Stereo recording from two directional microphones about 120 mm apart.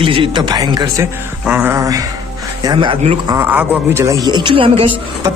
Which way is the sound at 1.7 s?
30° right (ahead or behind).